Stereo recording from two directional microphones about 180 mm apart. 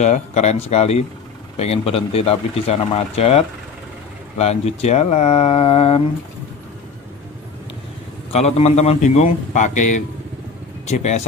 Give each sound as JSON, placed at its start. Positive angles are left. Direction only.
{"t": 0.0, "sound": "speech", "side_deg": 40}
{"t": 8.3, "sound": "speech", "side_deg": 35}
{"t": 10.9, "sound": "speech", "side_deg": 40}